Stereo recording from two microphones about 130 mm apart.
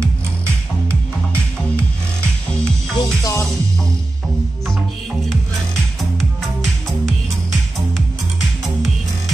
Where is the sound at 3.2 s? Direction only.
25° left (ahead or behind).